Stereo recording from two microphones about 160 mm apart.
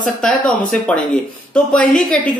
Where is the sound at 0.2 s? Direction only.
5° left (ahead or behind).